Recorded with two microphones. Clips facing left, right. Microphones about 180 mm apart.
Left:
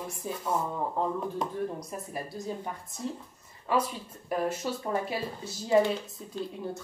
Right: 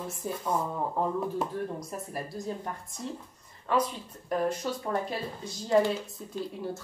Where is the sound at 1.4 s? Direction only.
Centre (ahead or behind).